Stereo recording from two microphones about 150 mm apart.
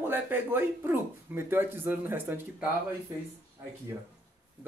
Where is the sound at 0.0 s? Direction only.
15° right (ahead or behind).